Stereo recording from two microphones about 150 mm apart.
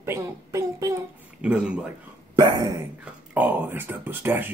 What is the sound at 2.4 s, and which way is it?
Hiccup, 25° right (ahead or behind).